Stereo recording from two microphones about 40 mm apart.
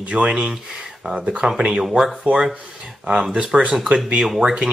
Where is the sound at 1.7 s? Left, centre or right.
Centre.